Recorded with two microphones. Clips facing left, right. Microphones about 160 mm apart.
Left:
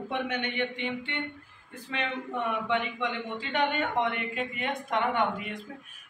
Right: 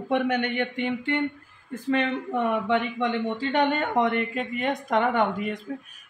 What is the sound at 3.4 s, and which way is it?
Speech, 40° right (ahead or behind).